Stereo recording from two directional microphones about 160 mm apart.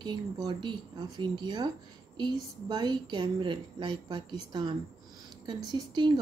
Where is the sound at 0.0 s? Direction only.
30° right (ahead or behind).